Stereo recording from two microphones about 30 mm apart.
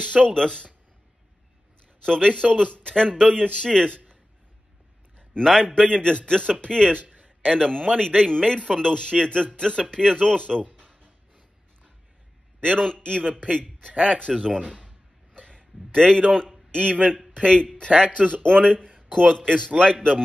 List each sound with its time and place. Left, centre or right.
0.2 s a man's voice: left
2.0 s a man's voice: left
5.4 s a man's voice: centre
12.7 s a man's voice: left
14.9 s a sound: left
16.3 s a man's voice: left
18.4 s a man's voice: left
18.9 s a sound: centre
19.4 s a man's voice: left